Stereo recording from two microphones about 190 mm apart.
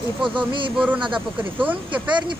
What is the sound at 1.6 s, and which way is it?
Speech, 10° right (ahead or behind).